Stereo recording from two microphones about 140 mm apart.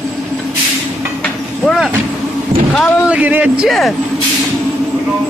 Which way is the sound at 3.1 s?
10° right (ahead or behind).